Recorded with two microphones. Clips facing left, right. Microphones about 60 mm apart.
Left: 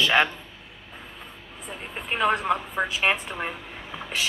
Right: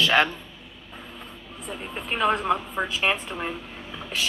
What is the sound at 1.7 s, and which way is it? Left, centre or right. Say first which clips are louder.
A woman's voice: right 1 dB; centre.